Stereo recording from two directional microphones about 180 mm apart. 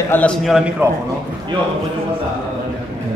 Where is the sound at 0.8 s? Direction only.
10° right (ahead or behind).